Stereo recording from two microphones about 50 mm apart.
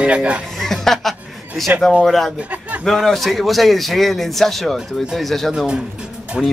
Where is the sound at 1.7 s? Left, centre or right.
Right.